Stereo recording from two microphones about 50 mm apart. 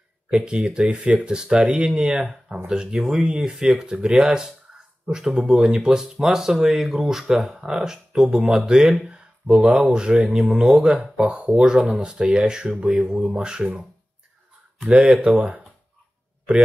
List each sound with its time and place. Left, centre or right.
0.3 s speech: centre
1.9 s speech: centre
2.7 s speech: centre
5.5 s speech: centre
14.8 s speech: right